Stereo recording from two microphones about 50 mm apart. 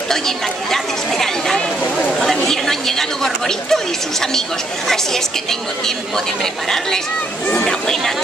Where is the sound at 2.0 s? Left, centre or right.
Centre.